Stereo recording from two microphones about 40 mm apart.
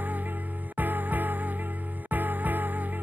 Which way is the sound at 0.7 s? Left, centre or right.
Right.